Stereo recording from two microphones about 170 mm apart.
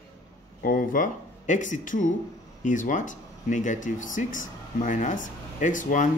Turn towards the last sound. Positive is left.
turn(degrees=50)  # may be behind; listen again after turning